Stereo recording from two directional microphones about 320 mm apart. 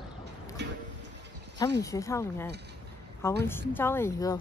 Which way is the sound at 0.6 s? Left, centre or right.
Right.